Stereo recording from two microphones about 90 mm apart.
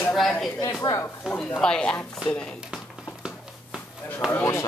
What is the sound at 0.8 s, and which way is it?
Speech, 55° left (ahead or behind).